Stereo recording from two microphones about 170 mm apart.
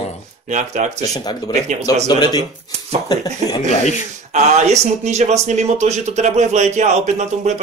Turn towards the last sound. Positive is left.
turn(degrees=-40)  # may be behind; listen again after turning